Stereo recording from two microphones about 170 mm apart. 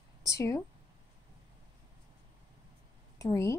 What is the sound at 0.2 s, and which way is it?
Speech, 20° left (ahead or behind).